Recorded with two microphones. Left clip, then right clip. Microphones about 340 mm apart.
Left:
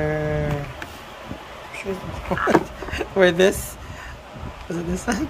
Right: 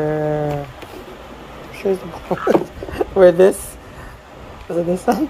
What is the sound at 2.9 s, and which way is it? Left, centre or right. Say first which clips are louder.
Speech: right 6 dB; centre.